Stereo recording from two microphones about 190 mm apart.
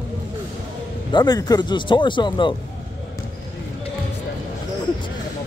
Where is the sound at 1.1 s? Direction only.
20° left (ahead or behind).